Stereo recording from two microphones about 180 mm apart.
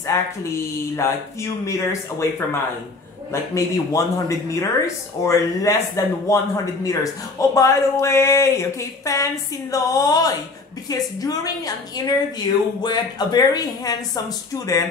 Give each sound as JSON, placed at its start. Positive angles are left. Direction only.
{"t": 0.0, "sound": "speech", "side_deg": 15}